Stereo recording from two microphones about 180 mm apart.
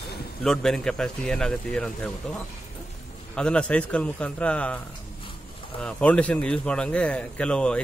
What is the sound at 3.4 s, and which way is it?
A man's voice, 5° left (ahead or behind).